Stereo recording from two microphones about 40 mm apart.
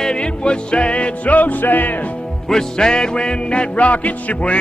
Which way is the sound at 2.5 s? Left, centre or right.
Centre.